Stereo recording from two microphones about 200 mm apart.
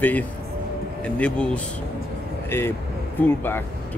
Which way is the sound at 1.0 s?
5° left (ahead or behind).